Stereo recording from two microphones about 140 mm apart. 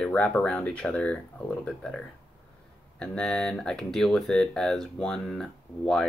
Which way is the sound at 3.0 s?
5° left (ahead or behind).